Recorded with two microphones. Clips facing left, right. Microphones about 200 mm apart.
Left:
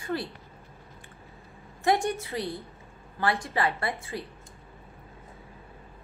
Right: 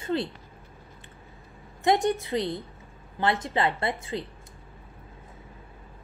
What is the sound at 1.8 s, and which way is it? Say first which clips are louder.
A woman's voice: right 2 dB; 20° right (ahead or behind).